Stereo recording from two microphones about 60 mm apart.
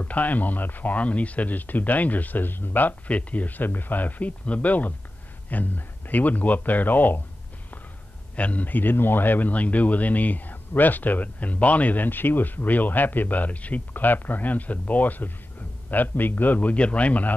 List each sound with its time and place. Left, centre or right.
0.0 s a man's voice: left
8.4 s a man's voice: left